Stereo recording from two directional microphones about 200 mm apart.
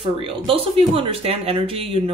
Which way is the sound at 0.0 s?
25° right (ahead or behind).